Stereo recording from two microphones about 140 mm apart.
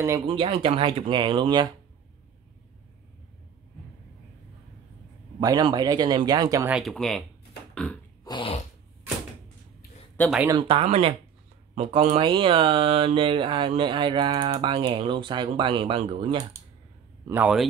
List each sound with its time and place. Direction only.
0.3 s speech: 40° right (ahead or behind)
5.4 s speech: 30° right (ahead or behind)
6.8 s speech: centre (ahead or behind)
7.7 s burping: 5° left (ahead or behind)
8.2 s a sound: 30° left (ahead or behind)
10.2 s speech: 15° left (ahead or behind)
10.5 s speech: 40° right (ahead or behind)
12.2 s speech: 40° right (ahead or behind)
17.3 s a man's voice: 10° right (ahead or behind)